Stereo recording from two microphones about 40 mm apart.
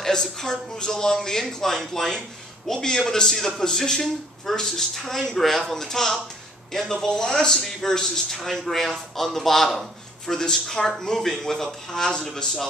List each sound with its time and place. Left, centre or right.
0.0 s a man's voice: centre